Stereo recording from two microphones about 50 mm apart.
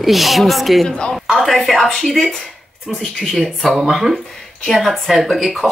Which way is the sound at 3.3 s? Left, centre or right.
Centre.